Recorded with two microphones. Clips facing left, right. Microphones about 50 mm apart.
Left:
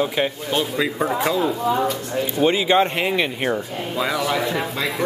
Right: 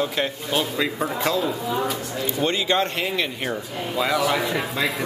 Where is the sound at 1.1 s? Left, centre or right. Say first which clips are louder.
Left 3 dB; left.